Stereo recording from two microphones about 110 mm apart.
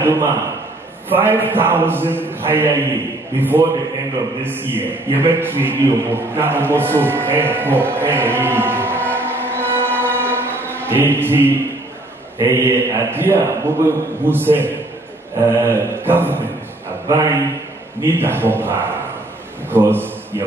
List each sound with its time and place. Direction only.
0.0 s a sound: 20° right (ahead or behind)
1.0 s a man's voice: 20° right (ahead or behind)
18.0 s a man's voice: 20° right (ahead or behind)